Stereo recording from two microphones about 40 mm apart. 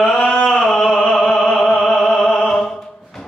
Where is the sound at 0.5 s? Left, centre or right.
Centre.